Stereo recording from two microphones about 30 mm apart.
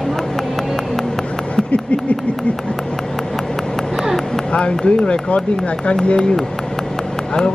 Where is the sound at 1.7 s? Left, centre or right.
Left.